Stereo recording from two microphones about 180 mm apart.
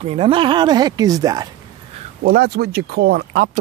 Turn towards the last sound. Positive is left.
turn(degrees=-60)  # may be behind; listen again after turning